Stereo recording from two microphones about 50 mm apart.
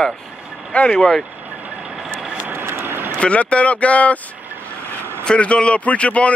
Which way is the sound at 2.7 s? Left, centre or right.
Right.